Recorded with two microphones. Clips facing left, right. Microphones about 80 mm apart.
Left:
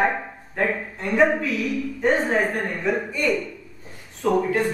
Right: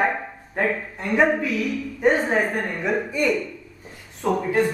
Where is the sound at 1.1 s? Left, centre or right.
Centre.